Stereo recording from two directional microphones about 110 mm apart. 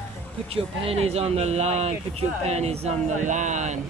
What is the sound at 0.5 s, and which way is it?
Speech, 65° right (ahead or behind).